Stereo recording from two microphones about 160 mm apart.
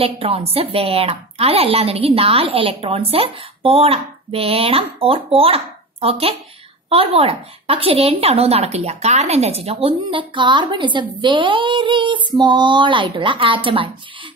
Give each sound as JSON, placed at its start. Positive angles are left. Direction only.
{"t": 0.0, "sound": "a woman's voice", "side_deg": -35}